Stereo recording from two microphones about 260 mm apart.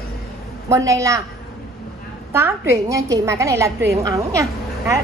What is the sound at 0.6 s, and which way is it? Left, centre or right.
Speech, centre.